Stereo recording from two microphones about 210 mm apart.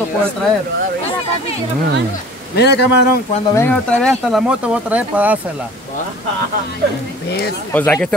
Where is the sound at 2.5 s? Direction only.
55° left (ahead or behind).